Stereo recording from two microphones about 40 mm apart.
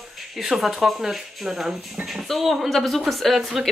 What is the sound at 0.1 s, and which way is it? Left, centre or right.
Speech, centre.